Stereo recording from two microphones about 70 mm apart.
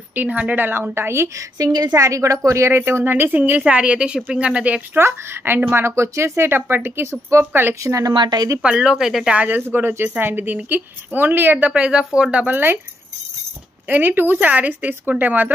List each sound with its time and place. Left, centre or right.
0.1 s a woman's voice: right
0.9 s a woman's voice: right
2.0 s a woman's voice: right; by 4.8 s centre
4.9 s a woman's voice: right
7.8 s a woman's voice: right
8.2 s speech: right
8.6 s speech: centre
9.4 s a woman's voice: right
11.6 s speech: centre
12.4 s a woman's voice: right
13.8 s a woman's voice: right